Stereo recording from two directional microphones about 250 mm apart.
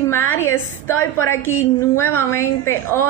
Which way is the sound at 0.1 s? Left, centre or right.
Centre.